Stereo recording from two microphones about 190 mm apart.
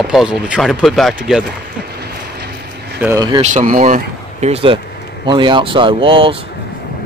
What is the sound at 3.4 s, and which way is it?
Speech, 40° right (ahead or behind).